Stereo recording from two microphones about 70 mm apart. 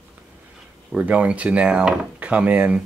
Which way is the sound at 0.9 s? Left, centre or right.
Centre.